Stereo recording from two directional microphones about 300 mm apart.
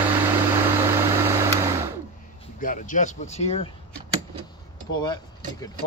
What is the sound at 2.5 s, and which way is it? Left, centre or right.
Speech, left.